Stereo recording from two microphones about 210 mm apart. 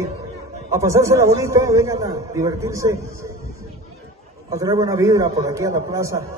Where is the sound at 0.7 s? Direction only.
15° right (ahead or behind).